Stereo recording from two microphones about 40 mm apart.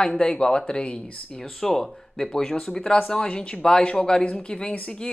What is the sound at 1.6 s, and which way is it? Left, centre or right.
Speech, centre.